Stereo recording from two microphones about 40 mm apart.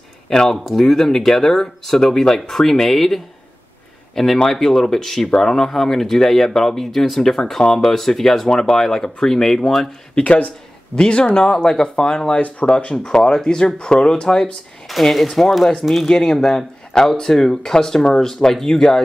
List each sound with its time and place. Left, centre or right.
0.3 s speech: centre
10.1 s speech: left
11.5 s speech: centre
12.4 s speech: left
12.9 s speech: centre
15.1 s speech: centre
16.1 s speech: centre